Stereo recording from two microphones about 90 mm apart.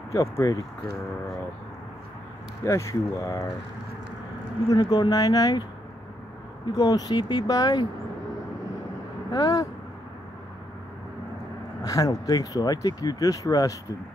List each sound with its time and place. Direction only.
0.1 s speech: 35° left (ahead or behind)
2.6 s speech: 35° left (ahead or behind)
4.6 s speech: 50° left (ahead or behind)
6.6 s speech: 45° left (ahead or behind)
9.3 s speech: 40° left (ahead or behind)
11.8 s speech: 40° left (ahead or behind)